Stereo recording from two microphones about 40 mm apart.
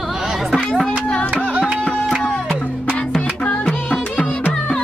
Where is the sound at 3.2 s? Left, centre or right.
Left.